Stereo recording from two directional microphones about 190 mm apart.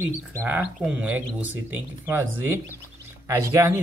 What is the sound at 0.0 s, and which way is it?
Speech, 10° right (ahead or behind).